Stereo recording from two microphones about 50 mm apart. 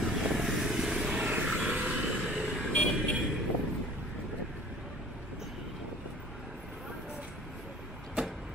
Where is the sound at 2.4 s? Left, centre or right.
Centre.